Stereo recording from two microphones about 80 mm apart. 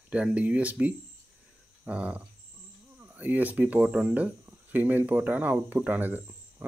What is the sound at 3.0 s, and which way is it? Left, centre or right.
Speech, right.